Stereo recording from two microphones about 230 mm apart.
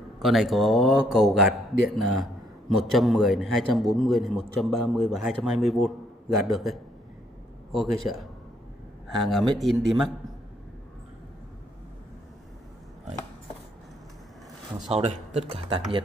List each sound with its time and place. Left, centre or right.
0.2 s a man's voice: centre
14.9 s speech: right